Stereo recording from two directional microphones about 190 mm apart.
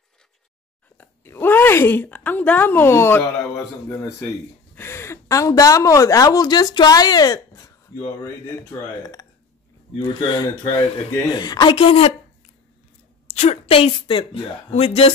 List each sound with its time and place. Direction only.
0.9 s speech: 10° left (ahead or behind)
4.7 s speech: 15° left (ahead or behind)
9.9 s speech: 25° left (ahead or behind)
13.3 s speech: 35° left (ahead or behind)